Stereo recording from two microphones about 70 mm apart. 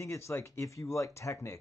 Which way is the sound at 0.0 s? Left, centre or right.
Left.